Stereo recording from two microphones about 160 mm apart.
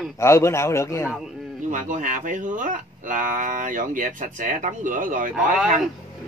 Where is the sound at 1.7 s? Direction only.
55° right (ahead or behind).